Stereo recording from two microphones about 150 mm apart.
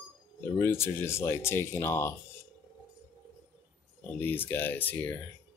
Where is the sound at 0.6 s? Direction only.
15° left (ahead or behind).